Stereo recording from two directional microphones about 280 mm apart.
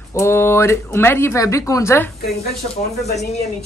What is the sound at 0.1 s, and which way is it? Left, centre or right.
Speech, centre.